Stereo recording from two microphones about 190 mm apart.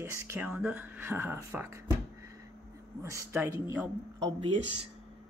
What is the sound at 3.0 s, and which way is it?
Speech, 15° right (ahead or behind).